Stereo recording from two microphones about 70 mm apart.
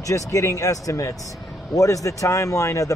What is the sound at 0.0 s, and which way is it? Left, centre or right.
Speech, left.